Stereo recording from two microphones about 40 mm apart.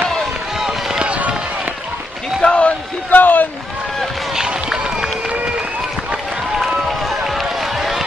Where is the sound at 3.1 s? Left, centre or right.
Left.